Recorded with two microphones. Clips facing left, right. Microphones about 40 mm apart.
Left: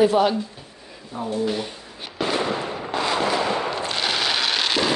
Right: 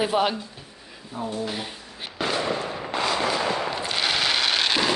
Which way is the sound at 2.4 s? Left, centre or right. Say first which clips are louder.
Left 2 dB; left.